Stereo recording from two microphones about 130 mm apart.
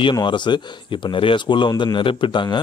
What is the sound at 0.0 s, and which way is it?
A man's voice, 35° left (ahead or behind).